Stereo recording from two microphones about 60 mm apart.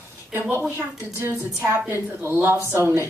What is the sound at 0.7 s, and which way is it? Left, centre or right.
A woman's voice, right.